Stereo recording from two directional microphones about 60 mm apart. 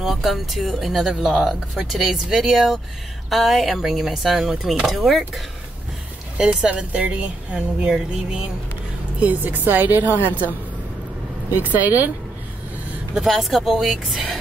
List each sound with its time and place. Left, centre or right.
0.0 s speech: centre
6.3 s speech: centre
7.9 s music: centre
9.2 s speech: right
11.5 s speech: right
13.1 s speech: centre